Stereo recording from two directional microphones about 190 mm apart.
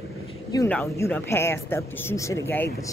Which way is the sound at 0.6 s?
10° left (ahead or behind).